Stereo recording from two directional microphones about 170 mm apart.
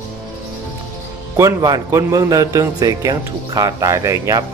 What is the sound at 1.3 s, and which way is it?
A man's voice, 20° right (ahead or behind).